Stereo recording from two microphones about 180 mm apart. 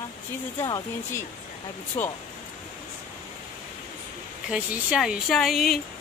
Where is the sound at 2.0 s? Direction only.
40° left (ahead or behind).